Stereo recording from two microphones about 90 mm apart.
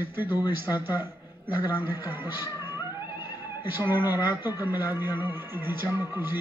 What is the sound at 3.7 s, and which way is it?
Speech, 25° right (ahead or behind).